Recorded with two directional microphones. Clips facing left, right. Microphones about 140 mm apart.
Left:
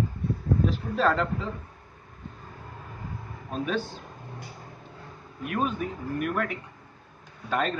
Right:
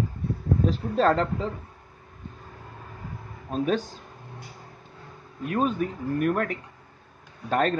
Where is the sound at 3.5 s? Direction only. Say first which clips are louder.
Right 4 dB; 40° right (ahead or behind).